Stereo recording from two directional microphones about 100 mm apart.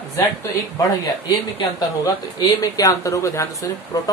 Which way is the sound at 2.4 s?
35° left (ahead or behind).